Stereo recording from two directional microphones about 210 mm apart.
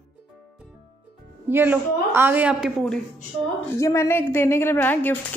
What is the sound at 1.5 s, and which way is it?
A woman's voice, 10° right (ahead or behind).